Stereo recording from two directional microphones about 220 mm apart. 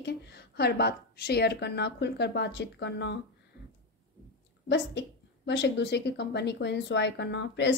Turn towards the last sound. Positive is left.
turn(degrees=55)  # may be behind; listen again after turning